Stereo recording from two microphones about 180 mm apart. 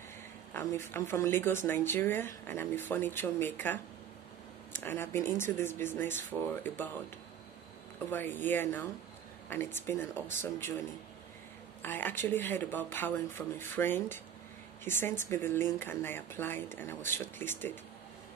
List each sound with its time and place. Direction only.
0.5 s speech: 15° left (ahead or behind)
4.8 s speech: 15° left (ahead or behind)
8.1 s speech: 10° left (ahead or behind)
11.8 s speech: 10° left (ahead or behind)